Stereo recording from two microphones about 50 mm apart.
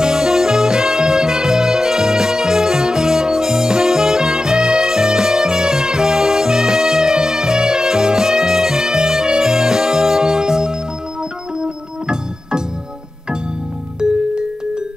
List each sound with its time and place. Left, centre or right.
0.0 s music: centre
11.6 s organ: centre
14.0 s music: centre